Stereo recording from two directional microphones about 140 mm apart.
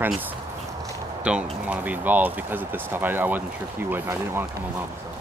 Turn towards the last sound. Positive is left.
turn(degrees=-15)  # may be behind; listen again after turning